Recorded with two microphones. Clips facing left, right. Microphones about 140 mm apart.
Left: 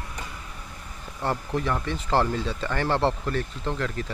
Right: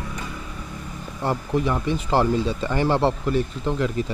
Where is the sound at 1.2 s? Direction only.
10° right (ahead or behind).